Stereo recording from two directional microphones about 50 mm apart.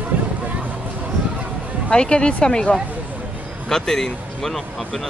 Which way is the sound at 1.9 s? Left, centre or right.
Centre.